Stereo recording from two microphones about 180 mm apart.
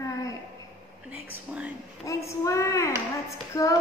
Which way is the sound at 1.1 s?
10° right (ahead or behind).